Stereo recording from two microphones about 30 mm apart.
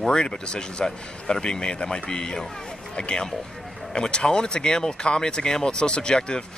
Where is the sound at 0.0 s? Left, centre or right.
Left.